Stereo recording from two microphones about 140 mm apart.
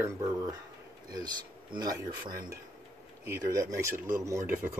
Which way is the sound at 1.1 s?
30° right (ahead or behind).